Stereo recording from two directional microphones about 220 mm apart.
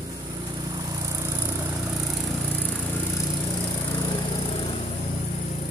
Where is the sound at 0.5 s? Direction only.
15° right (ahead or behind); by 2.7 s 5° left (ahead or behind).